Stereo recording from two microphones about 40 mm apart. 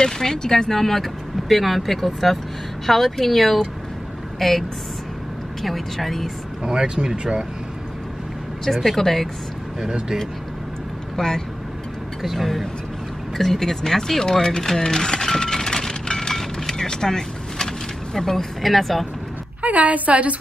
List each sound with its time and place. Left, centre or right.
0.0 s speech: centre
6.6 s speech: right
8.7 s speech: centre
9.8 s speech: right
11.1 s speech: centre
12.2 s speech: centre
14.8 s a sound: centre
19.6 s a woman's voice: right